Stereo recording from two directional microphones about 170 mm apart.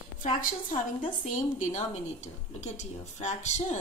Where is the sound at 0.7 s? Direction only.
50° left (ahead or behind).